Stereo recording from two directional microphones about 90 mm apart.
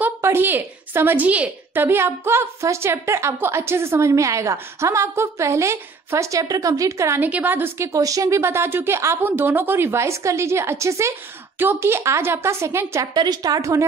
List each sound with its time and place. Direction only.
0.2 s a woman's voice: 25° right (ahead or behind)
7.2 s speech: 20° right (ahead or behind)
13.0 s a woman's voice: 55° right (ahead or behind)
13.6 s a woman's voice: 35° right (ahead or behind)